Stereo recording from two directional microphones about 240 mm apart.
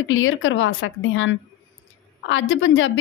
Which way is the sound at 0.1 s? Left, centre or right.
Left.